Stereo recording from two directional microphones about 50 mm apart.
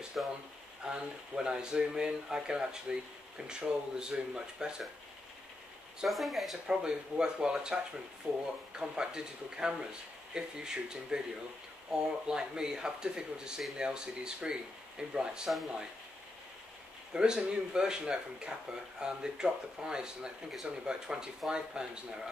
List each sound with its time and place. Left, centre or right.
0.2 s speech: centre
6.0 s speech: centre
6.7 s speech: centre
17.1 s speech: centre